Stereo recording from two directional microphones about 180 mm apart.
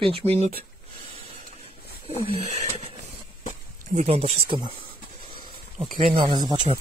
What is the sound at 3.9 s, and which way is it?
Speech, 35° right (ahead or behind).